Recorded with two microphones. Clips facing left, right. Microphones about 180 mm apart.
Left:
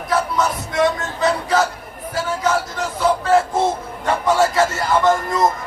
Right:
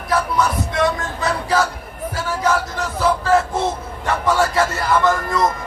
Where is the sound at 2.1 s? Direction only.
30° left (ahead or behind).